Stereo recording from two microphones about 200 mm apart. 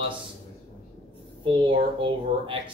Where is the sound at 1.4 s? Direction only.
25° right (ahead or behind).